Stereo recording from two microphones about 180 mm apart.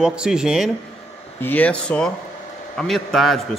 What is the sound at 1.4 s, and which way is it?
Speech, 10° left (ahead or behind).